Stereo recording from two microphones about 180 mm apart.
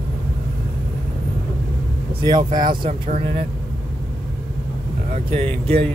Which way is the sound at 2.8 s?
35° right (ahead or behind).